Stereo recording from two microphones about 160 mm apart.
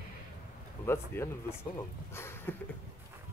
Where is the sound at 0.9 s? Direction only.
15° left (ahead or behind).